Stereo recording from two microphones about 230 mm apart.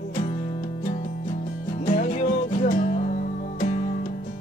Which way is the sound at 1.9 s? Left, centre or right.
Left.